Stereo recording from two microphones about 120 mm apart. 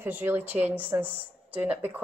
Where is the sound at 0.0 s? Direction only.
15° right (ahead or behind).